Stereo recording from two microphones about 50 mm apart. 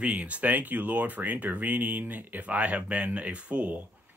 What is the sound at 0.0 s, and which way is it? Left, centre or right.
Speech, right.